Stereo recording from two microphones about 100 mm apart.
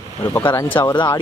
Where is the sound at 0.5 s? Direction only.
20° left (ahead or behind).